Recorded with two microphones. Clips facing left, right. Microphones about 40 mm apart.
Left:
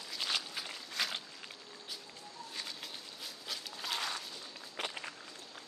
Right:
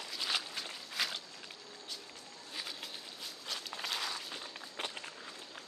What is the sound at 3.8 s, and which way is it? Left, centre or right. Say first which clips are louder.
Walk: left 1 dB; centre.